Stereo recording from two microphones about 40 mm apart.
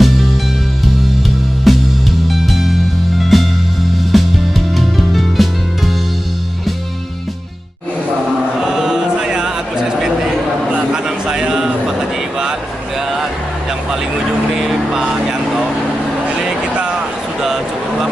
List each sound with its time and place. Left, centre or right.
0.0 s music: centre
1.7 s music: centre
8.5 s chant: centre
10.7 s a sound: right
14.5 s vehicle: centre